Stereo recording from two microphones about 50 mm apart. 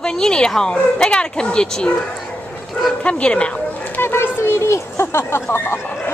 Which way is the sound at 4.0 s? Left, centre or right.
Left.